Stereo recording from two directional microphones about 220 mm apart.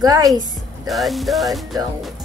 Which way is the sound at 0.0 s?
15° right (ahead or behind).